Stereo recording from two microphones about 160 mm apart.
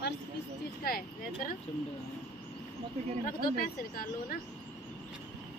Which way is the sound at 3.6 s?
65° left (ahead or behind).